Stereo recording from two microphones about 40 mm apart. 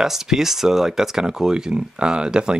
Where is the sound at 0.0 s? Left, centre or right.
Centre.